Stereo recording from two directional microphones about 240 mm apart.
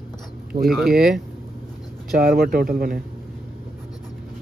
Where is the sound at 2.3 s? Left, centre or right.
Right.